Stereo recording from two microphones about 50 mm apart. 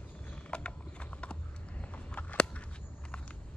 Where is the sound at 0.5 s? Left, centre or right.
Left.